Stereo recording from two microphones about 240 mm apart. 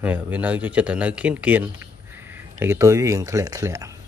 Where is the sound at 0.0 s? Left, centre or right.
Centre.